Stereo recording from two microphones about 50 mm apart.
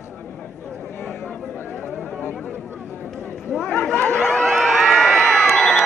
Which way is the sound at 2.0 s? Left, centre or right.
Left.